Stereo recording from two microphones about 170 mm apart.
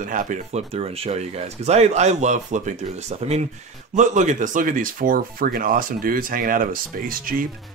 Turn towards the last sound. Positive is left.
turn(degrees=-55)  # may be behind; listen again after turning